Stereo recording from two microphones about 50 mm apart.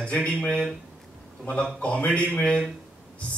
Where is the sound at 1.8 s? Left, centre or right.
Left.